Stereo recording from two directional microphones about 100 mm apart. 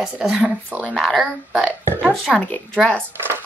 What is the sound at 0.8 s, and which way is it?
A woman's voice, 5° left (ahead or behind).